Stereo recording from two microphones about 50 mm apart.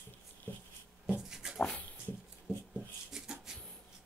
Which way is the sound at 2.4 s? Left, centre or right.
Centre.